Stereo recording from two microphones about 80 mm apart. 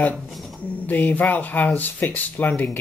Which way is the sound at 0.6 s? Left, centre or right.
Left.